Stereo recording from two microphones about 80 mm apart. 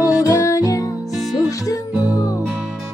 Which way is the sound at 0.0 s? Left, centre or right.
Left.